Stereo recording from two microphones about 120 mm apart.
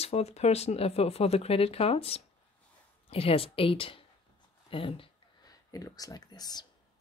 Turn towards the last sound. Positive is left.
turn(degrees=35)  # may be behind; listen again after turning